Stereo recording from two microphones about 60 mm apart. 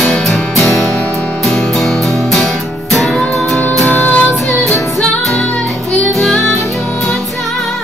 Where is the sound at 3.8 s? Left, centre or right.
Left.